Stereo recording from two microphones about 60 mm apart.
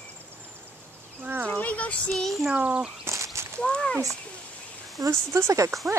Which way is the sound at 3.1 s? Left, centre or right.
Right.